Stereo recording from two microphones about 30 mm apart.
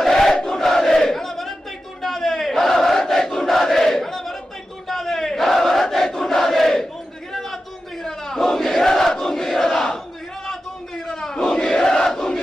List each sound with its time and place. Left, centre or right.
0.0 s battle cry: centre
8.0 s battle cry: centre
11.1 s battle cry: centre
11.4 s crowd: centre